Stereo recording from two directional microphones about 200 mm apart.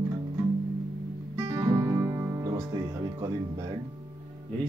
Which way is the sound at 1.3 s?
15° right (ahead or behind).